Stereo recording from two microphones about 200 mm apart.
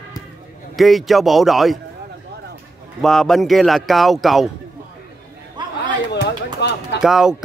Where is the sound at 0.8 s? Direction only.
Centre (ahead or behind).